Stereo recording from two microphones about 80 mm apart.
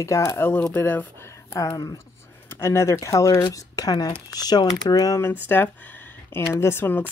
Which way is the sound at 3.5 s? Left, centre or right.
Left.